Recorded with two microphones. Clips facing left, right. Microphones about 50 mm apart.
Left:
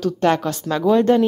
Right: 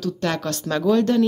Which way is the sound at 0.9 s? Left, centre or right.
Left.